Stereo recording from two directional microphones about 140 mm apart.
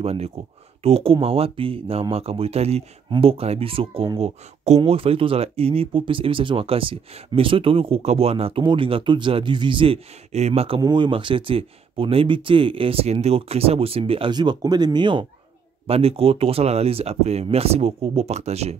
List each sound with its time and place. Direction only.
0.0 s speech: 45° right (ahead or behind)
10.8 s speech: 35° right (ahead or behind)
14.3 s speech: 30° right (ahead or behind)
15.9 s speech: 45° right (ahead or behind)